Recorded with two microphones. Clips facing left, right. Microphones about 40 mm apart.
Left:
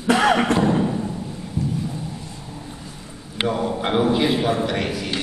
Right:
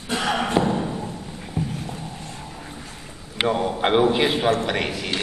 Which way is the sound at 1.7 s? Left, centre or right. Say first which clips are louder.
Left 4 dB; right.